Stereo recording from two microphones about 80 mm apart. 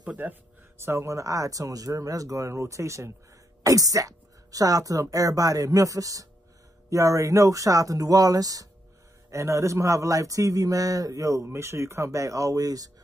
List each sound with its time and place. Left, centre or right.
0.0 s a man's voice: centre; by 12.9 s right